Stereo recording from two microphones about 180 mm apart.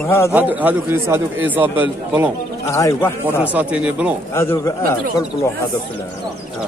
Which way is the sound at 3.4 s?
10° right (ahead or behind).